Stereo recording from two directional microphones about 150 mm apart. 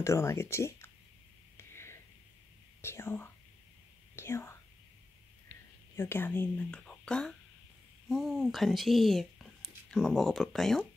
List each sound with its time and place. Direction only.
0.0 s speech: 20° left (ahead or behind)
1.7 s whispering: 15° left (ahead or behind)
2.8 s speech: 15° left (ahead or behind)
4.1 s whispering: 15° left (ahead or behind)
5.9 s speech: 15° left (ahead or behind)